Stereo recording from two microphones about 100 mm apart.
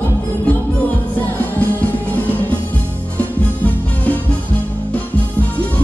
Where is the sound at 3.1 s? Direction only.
15° left (ahead or behind).